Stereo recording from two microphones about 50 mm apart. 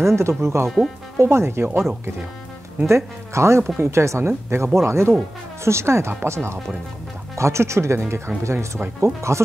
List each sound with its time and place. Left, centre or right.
0.0 s speech: right
0.7 s speech: centre
1.1 s speech: right
2.9 s speech: right